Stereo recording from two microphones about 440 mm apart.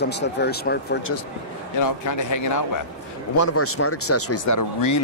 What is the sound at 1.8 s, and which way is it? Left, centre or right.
Speech, left.